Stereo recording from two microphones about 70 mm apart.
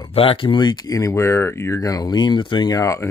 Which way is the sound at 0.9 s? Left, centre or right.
Left.